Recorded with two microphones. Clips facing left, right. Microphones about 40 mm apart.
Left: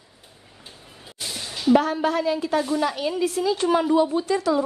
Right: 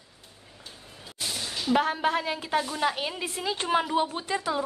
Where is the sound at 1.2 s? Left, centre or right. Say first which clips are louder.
Left 5 dB; centre.